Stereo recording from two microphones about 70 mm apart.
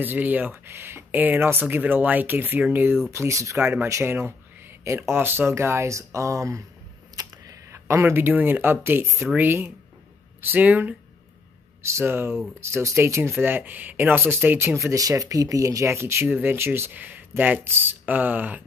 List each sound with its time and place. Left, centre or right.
0.0 s speech: right
0.7 s speech: right
1.2 s speech: right
3.1 s speech: right
4.0 s speech: right
7.7 s speech: right
9.0 s speech: right
9.4 s speech: right
11.8 s speech: right
14.9 s speech: right
16.3 s speech: right